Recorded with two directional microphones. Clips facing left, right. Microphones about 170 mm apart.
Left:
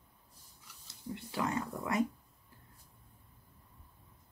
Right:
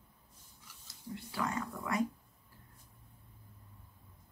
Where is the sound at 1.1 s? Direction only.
20° left (ahead or behind).